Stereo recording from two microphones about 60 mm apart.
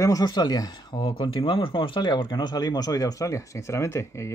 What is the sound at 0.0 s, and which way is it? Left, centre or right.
Speech, left.